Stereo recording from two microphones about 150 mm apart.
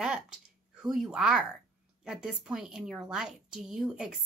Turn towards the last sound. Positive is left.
turn(degrees=-5)  # may be behind; listen again after turning